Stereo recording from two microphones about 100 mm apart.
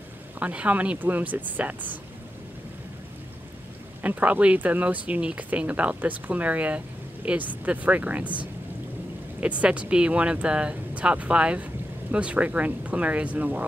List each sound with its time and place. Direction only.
0.4 s speech: 15° right (ahead or behind)
4.0 s speech: 15° right (ahead or behind)